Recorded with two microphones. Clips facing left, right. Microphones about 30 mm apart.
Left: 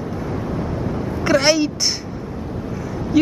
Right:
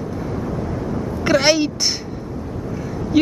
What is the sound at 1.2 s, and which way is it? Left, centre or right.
Speech, centre.